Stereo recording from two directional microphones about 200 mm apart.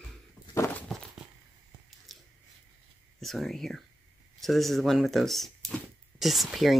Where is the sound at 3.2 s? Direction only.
Centre (ahead or behind).